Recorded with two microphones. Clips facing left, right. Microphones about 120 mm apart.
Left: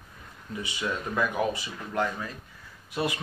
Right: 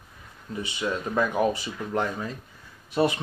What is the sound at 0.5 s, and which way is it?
Speech, 30° right (ahead or behind).